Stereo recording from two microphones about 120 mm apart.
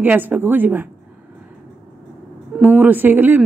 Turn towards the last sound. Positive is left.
turn(degrees=-15)  # may be behind; listen again after turning